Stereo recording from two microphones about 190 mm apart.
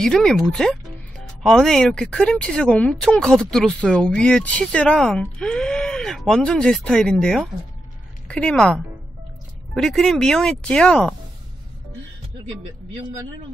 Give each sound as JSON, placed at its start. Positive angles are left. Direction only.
{"t": 0.0, "sound": "speech", "side_deg": 5}